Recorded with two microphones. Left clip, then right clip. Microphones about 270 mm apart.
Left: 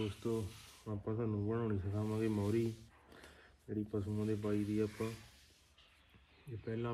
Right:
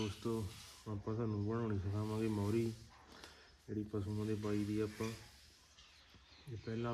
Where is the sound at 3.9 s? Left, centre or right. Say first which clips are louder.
Left 3 dB; centre.